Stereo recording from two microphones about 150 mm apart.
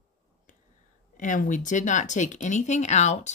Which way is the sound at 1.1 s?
60° left (ahead or behind).